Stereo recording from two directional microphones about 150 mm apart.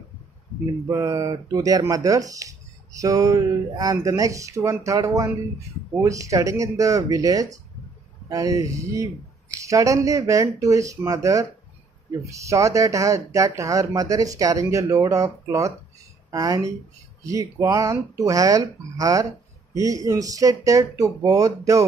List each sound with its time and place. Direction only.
0.8 s speech: 20° right (ahead or behind)